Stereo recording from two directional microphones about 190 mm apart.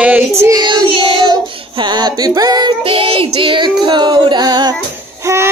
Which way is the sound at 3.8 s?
25° right (ahead or behind).